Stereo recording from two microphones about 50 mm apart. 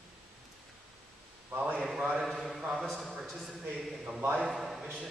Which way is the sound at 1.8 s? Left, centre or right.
Centre.